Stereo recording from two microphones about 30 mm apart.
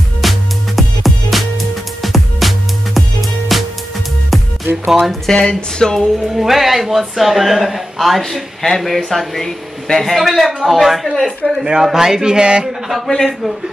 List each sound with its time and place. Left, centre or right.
0.2 s music: centre
4.8 s speech: centre
5.3 s speech: left
5.9 s speech: centre
8.2 s speech: centre
10.2 s speech: centre
11.8 s a sound: centre
12.6 s speech: centre